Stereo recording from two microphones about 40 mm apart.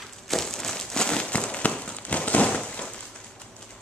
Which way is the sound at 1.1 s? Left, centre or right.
Left.